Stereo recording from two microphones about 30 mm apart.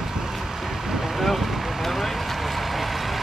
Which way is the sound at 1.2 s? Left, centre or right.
Centre.